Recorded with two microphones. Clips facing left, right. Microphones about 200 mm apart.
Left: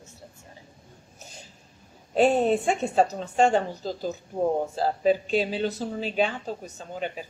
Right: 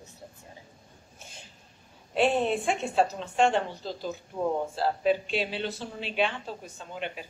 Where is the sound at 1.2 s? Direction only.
40° left (ahead or behind).